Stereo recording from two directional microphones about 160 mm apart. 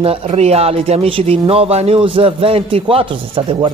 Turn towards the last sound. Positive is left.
turn(degrees=-35)  # may be behind; listen again after turning